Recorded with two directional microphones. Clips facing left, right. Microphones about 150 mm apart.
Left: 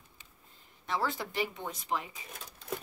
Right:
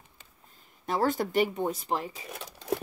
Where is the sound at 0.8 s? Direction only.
45° right (ahead or behind).